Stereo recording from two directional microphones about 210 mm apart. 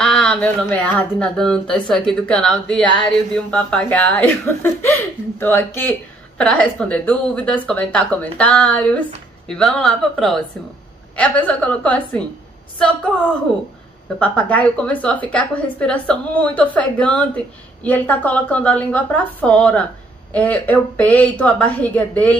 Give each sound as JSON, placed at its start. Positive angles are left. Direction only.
{"t": 0.0, "sound": "speech", "side_deg": 5}